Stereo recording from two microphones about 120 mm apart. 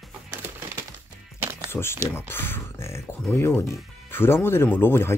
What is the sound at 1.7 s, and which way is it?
Speech, 20° left (ahead or behind).